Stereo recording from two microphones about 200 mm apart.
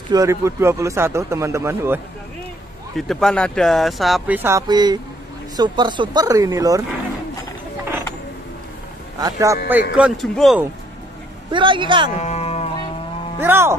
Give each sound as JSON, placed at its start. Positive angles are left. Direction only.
{"t": 0.1, "sound": "speech", "side_deg": -15}
{"t": 3.0, "sound": "speech", "side_deg": 0}
{"t": 9.2, "sound": "speech", "side_deg": -15}
{"t": 9.9, "sound": "speech", "side_deg": 0}
{"t": 11.5, "sound": "speech", "side_deg": -25}
{"t": 12.2, "sound": "music", "side_deg": 35}
{"t": 13.4, "sound": "speech", "side_deg": -10}